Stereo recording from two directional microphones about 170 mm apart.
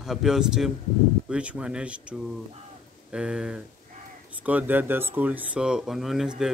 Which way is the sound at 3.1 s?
5° right (ahead or behind).